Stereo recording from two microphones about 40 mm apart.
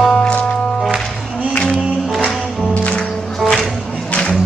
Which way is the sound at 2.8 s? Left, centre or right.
Left.